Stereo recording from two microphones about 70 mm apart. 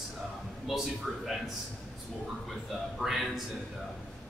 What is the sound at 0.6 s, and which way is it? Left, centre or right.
Speech, centre.